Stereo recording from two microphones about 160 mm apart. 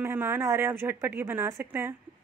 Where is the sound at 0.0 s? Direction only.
15° right (ahead or behind).